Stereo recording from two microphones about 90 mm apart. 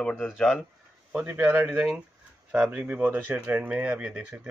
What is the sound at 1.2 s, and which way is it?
A man's voice, 20° right (ahead or behind).